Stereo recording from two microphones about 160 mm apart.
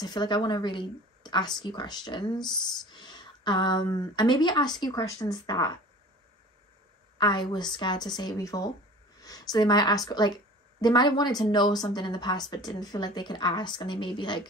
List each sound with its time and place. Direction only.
0.0 s a woman's voice: 25° left (ahead or behind)
7.2 s a woman's voice: 25° left (ahead or behind)